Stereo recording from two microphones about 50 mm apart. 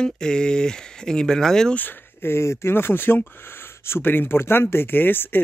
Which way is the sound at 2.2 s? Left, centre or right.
Left.